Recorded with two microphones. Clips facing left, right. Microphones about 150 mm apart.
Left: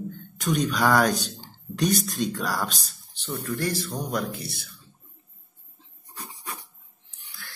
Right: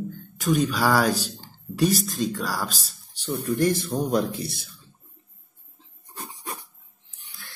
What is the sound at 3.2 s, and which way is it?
Speech, 15° right (ahead or behind).